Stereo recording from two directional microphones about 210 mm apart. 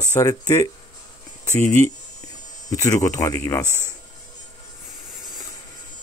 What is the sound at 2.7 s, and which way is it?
Speech, 15° left (ahead or behind).